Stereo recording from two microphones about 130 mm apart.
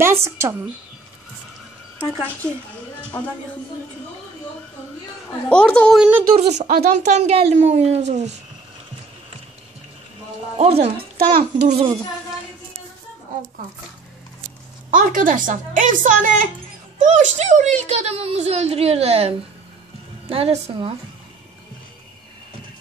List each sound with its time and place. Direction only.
0.0 s a woman's voice: 20° right (ahead or behind)
2.1 s a woman's voice: 15° right (ahead or behind)
5.5 s a woman's voice: 5° left (ahead or behind)
6.3 s a woman's voice: 55° right (ahead or behind)
10.6 s speech: 50° right (ahead or behind)
15.0 s a woman's voice: 90° right
17.0 s a woman's voice: 65° right (ahead or behind)